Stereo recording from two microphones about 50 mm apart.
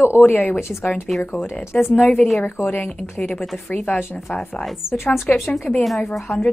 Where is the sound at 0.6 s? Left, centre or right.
Left.